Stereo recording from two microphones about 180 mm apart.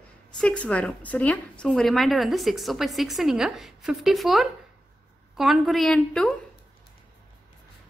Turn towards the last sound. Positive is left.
turn(degrees=5)  # may be behind; listen again after turning